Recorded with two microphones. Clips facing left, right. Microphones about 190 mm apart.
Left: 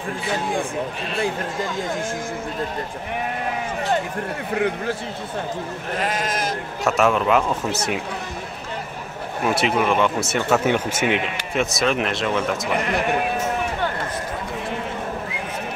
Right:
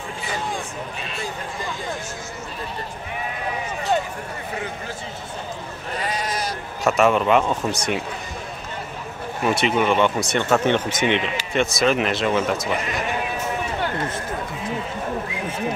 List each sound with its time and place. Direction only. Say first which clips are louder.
4.6 s speech: left 11 dB; 65° left (ahead or behind)
5.9 s speech: left 2 dB; 50° left (ahead or behind)
6.8 s speech: right 1 dB; centre (ahead or behind)
9.4 s speech: even; centre (ahead or behind)